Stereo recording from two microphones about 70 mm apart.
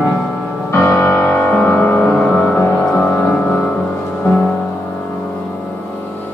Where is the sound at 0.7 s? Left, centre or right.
Left.